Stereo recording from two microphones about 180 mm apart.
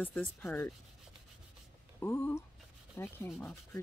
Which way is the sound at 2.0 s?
15° left (ahead or behind).